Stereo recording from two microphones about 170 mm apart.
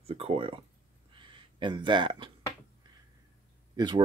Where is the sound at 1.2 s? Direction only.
30° right (ahead or behind).